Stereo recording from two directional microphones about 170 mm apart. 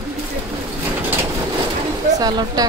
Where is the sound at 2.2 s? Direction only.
25° right (ahead or behind).